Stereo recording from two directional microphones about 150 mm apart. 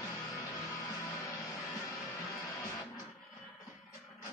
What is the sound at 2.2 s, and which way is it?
Music, 20° left (ahead or behind).